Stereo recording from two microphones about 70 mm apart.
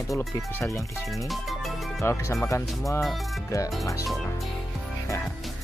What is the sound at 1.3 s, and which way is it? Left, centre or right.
Music, centre.